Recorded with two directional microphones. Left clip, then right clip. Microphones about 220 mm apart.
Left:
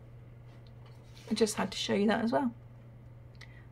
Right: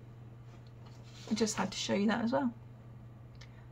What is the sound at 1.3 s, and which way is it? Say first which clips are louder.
Speech: left 4 dB; 15° left (ahead or behind).